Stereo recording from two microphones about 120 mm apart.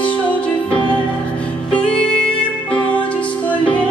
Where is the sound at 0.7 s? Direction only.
45° left (ahead or behind).